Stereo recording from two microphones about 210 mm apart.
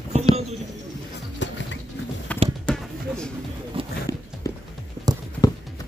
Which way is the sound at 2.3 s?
5° left (ahead or behind).